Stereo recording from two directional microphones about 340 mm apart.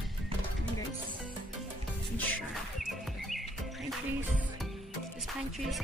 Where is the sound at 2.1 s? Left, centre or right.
Centre.